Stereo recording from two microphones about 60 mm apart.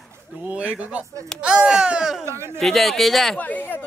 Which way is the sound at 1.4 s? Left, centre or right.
Centre.